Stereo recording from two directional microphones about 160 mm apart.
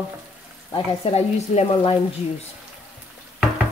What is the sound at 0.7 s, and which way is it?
Frying, 35° left (ahead or behind).